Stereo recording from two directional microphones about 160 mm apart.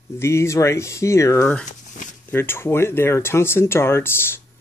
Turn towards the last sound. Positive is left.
turn(degrees=15)  # may be behind; listen again after turning